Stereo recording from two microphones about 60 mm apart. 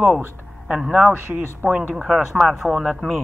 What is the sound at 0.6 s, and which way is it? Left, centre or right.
Speech, centre.